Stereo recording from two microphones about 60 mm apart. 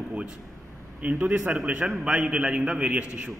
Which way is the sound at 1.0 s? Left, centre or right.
Right.